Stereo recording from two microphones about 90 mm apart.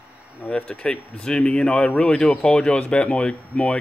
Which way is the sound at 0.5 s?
10° left (ahead or behind).